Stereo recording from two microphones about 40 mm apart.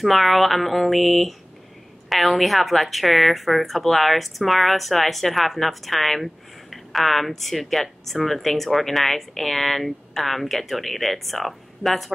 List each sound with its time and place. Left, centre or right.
0.0 s a woman's voice: centre